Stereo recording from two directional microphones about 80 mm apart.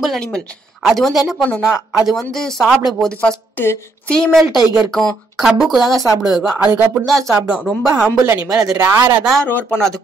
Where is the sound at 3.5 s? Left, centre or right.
Left.